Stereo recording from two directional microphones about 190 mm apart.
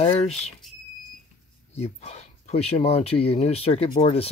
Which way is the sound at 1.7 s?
35° left (ahead or behind).